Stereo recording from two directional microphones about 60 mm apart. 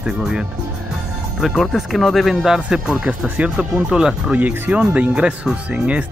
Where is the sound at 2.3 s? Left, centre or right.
Centre.